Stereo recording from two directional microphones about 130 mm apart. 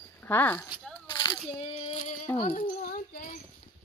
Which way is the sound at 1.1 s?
35° left (ahead or behind).